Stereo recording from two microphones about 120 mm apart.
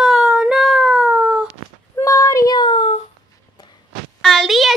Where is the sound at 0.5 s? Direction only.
Centre (ahead or behind).